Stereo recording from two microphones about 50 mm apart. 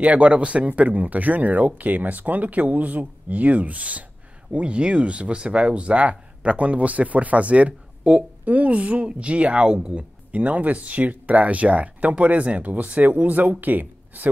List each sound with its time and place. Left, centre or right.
0.0 s speech: right